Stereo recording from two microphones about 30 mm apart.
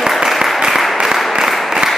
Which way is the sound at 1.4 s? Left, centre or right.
Centre.